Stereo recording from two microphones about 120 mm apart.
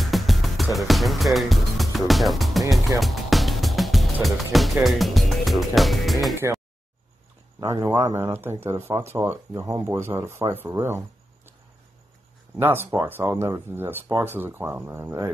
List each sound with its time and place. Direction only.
0.0 s music: centre (ahead or behind)
4.8 s speech: centre (ahead or behind)
6.4 s speech: 20° right (ahead or behind)
7.6 s speech: 25° right (ahead or behind)
12.5 s speech: 20° right (ahead or behind)